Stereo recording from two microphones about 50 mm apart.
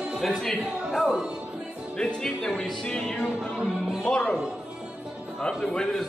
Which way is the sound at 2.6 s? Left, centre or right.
Centre.